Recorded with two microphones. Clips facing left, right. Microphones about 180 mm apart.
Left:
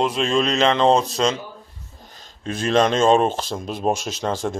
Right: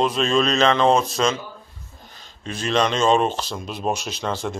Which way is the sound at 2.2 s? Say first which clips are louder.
Left 4 dB; 45° left (ahead or behind).